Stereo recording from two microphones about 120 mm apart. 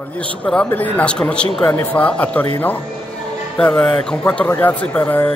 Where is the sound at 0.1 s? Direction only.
10° left (ahead or behind).